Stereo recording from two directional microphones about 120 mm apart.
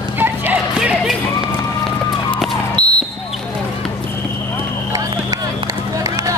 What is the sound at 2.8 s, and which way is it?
Basketball bounce, 10° left (ahead or behind).